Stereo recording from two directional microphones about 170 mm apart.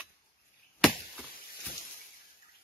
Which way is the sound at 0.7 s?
Centre (ahead or behind).